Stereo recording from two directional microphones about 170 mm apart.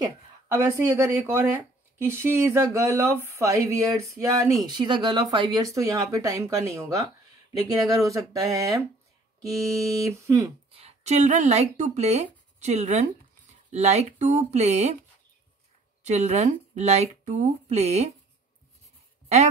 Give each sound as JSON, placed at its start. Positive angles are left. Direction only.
{"t": 0.0, "sound": "speech", "side_deg": -15}
{"t": 10.0, "sound": "speech", "side_deg": -15}
{"t": 10.7, "sound": "speech", "side_deg": -35}
{"t": 16.0, "sound": "speech", "side_deg": -40}
{"t": 19.2, "sound": "a sound", "side_deg": -40}